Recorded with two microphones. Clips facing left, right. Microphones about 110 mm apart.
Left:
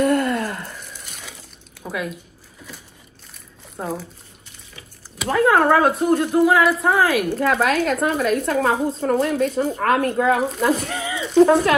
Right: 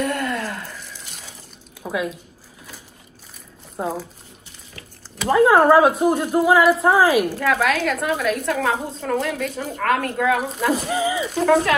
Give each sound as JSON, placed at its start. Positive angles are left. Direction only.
{"t": 0.0, "sound": "a sound", "side_deg": 45}
{"t": 1.8, "sound": "a sound", "side_deg": -5}
{"t": 3.8, "sound": "a woman's voice", "side_deg": -10}
{"t": 5.2, "sound": "a woman's voice", "side_deg": -5}
{"t": 7.3, "sound": "a woman's voice", "side_deg": 35}
{"t": 10.8, "sound": "speech", "side_deg": -5}